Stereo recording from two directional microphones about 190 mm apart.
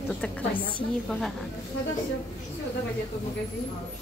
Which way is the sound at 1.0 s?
5° left (ahead or behind).